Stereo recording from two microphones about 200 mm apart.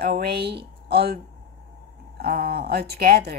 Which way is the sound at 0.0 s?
50° right (ahead or behind).